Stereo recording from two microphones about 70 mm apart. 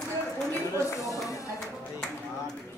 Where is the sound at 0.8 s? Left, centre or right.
Left.